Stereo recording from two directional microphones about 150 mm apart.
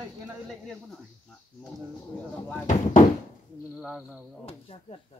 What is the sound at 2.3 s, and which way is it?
Speech, 10° left (ahead or behind).